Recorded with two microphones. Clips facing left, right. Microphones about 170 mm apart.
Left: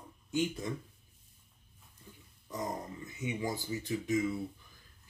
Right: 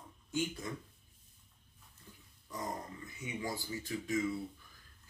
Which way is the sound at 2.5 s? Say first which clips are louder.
Left 3 dB; 20° left (ahead or behind).